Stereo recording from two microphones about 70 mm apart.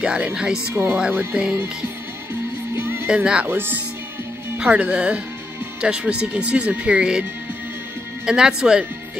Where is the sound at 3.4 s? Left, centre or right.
Right.